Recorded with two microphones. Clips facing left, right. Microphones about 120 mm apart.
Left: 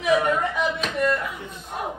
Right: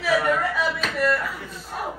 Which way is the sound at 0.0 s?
20° left (ahead or behind).